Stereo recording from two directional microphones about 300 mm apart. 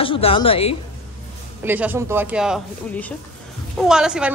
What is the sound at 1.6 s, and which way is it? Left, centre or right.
A woman's voice, centre.